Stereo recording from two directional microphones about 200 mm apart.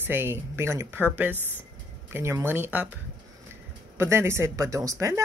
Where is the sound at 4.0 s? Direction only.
10° right (ahead or behind).